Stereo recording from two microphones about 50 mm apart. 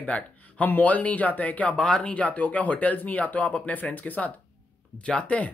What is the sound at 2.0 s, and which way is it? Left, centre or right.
Speech, left.